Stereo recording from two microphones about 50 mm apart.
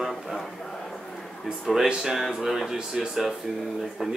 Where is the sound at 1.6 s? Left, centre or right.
Centre.